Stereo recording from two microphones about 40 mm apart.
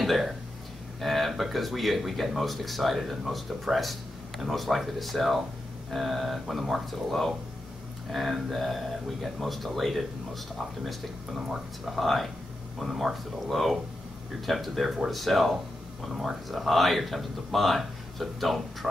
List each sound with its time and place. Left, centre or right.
0.0 s a sound: centre
1.0 s speech: centre
11.4 s speech: centre
16.4 s speech: centre